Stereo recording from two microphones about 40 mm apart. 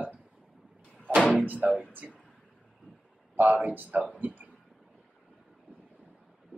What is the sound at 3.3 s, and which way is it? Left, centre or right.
Speech, right.